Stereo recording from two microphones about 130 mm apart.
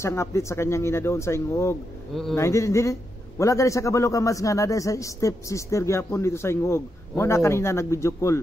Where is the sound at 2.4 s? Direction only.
25° left (ahead or behind).